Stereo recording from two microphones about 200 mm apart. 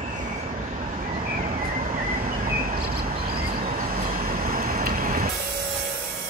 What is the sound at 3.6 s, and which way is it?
Vehicle, 45° right (ahead or behind).